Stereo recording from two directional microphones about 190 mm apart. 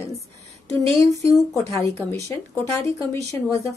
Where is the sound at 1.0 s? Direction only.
15° left (ahead or behind).